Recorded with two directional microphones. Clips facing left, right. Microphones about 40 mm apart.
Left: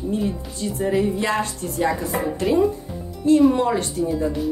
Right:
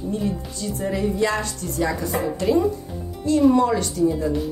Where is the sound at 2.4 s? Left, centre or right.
Centre.